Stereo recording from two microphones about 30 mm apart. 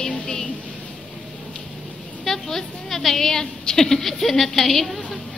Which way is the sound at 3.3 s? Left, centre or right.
Centre.